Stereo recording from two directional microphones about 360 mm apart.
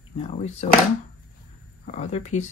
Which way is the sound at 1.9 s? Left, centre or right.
Centre.